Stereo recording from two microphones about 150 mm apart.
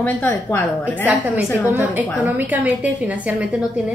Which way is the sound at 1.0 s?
10° right (ahead or behind).